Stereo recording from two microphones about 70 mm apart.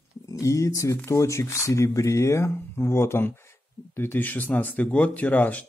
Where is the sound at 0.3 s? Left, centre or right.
Left.